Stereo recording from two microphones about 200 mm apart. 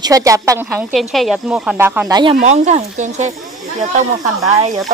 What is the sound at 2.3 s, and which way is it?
Speech, 35° right (ahead or behind).